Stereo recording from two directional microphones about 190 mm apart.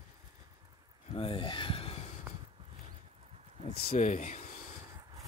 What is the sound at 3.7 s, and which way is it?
Speech, 45° left (ahead or behind).